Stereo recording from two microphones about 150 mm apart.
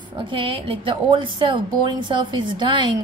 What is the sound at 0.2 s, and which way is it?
A woman's voice, 35° right (ahead or behind).